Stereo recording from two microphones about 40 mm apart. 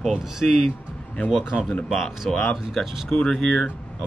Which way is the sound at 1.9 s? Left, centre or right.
Centre.